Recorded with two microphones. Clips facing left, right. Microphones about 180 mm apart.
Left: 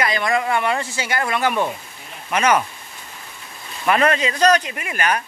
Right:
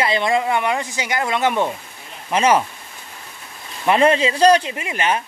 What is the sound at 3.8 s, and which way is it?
Speech, 25° right (ahead or behind).